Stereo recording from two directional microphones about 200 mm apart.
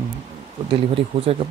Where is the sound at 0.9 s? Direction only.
30° right (ahead or behind).